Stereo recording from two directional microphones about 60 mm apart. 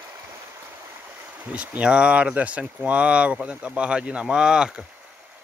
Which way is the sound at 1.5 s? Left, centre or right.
Centre.